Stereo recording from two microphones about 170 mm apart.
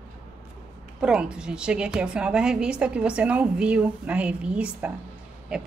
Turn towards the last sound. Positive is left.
turn(degrees=-5)  # may be behind; listen again after turning